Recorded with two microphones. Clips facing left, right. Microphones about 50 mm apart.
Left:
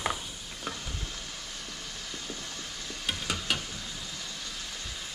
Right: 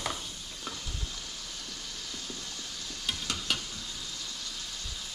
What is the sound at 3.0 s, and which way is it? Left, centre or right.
Stir, centre.